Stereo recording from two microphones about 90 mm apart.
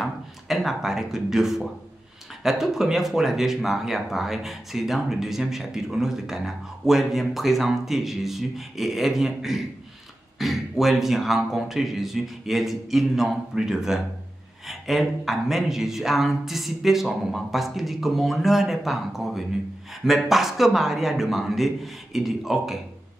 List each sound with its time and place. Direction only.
0.0 s speech: centre (ahead or behind)